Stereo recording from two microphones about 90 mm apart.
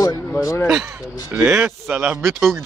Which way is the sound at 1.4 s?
25° right (ahead or behind).